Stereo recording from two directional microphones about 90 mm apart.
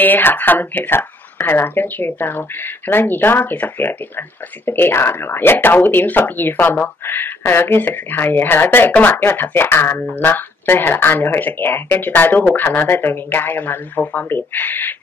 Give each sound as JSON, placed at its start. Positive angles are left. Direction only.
{"t": 0.0, "sound": "speech", "side_deg": 20}